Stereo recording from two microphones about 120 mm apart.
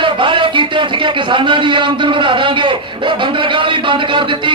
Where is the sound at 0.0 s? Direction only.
40° right (ahead or behind).